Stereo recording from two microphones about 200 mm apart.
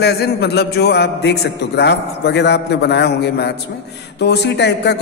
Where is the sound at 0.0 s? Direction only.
55° left (ahead or behind).